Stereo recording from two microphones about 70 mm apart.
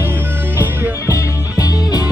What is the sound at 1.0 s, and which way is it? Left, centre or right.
Music, left.